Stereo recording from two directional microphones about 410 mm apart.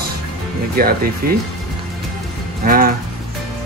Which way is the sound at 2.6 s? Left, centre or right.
Right.